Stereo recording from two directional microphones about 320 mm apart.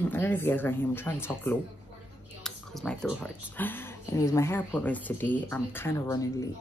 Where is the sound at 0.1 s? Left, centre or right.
Centre.